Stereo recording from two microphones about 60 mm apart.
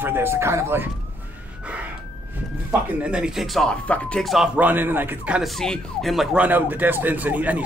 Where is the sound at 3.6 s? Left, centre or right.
Left.